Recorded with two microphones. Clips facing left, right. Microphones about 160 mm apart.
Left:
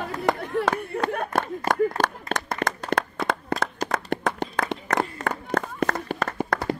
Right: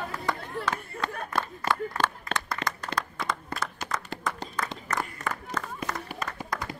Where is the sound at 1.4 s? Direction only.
45° left (ahead or behind).